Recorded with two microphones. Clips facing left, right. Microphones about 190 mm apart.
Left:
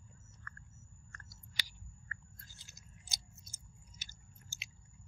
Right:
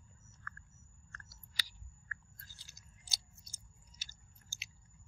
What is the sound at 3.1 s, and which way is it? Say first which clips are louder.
Chewing: even; 20° left (ahead or behind).